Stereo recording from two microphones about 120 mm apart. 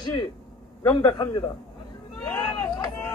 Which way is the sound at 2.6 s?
35° left (ahead or behind).